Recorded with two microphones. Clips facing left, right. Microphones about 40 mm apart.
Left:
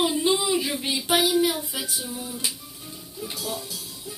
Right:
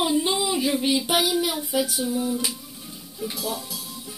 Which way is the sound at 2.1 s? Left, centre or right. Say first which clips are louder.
Right 7 dB; right.